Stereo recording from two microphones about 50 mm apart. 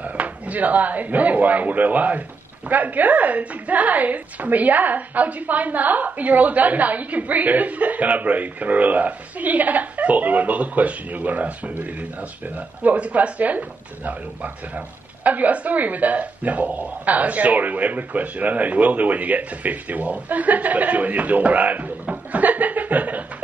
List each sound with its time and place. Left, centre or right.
0.0 s speech: right